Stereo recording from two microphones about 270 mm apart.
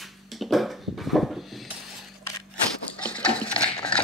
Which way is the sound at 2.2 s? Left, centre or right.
Centre.